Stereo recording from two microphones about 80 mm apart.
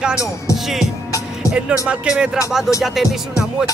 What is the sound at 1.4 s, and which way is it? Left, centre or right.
Music, centre.